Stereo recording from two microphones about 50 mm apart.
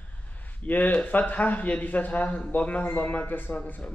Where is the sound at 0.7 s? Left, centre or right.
Left.